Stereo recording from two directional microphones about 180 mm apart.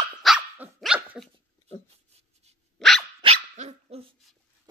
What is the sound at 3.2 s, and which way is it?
Dog, 35° right (ahead or behind).